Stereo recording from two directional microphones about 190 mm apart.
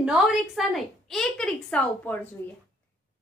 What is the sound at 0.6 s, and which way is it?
A woman's voice, centre (ahead or behind).